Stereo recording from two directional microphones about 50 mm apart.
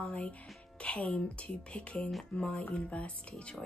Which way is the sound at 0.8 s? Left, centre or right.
Left.